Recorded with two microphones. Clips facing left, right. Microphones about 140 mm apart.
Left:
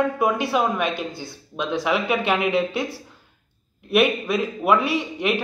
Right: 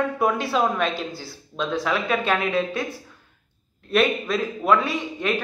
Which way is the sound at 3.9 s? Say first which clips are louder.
Left 2 dB; 5° left (ahead or behind).